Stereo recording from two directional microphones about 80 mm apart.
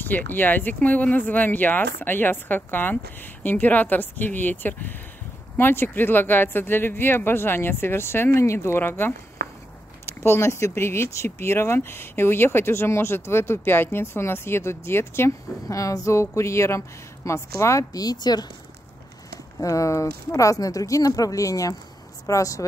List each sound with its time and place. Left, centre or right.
0.0 s a woman's voice: left
15.7 s speech: left
19.6 s speech: left